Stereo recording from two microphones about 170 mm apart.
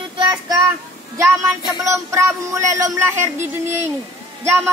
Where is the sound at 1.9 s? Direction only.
15° right (ahead or behind).